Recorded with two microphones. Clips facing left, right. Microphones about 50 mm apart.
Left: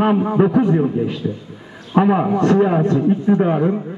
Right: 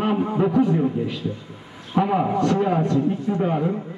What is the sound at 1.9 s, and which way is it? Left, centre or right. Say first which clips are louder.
A man's voice: left 5 dB; left.